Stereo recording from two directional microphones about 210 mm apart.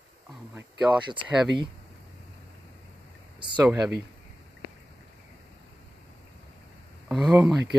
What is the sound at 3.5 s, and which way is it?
Speech, 5° right (ahead or behind).